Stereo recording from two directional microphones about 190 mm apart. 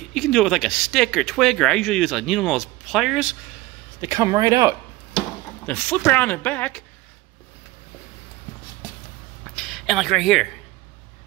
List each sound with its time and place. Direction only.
0.1 s speech: centre (ahead or behind)
4.0 s speech: 15° right (ahead or behind)
5.7 s speech: 10° left (ahead or behind)
9.6 s speech: centre (ahead or behind)